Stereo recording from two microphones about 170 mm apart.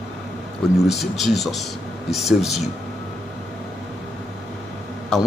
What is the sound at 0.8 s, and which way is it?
Speech, centre (ahead or behind).